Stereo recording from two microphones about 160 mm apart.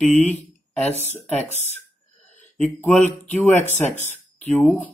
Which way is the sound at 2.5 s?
10° left (ahead or behind).